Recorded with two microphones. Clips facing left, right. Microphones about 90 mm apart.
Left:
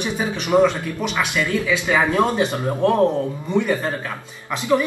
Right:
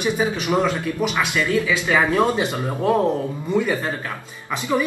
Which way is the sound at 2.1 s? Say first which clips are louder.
Left 1 dB; centre (ahead or behind).